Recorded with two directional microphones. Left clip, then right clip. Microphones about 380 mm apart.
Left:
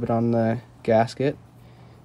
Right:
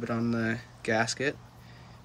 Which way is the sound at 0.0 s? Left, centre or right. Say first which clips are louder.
Left 9 dB; centre.